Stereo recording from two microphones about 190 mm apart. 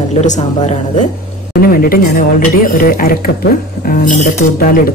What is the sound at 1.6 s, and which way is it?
Speech, 50° left (ahead or behind).